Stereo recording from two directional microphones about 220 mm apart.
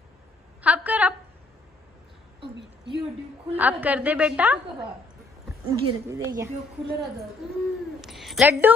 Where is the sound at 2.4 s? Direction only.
50° right (ahead or behind).